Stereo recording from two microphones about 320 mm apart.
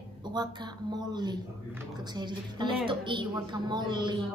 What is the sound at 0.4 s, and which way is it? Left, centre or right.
A woman's voice, centre.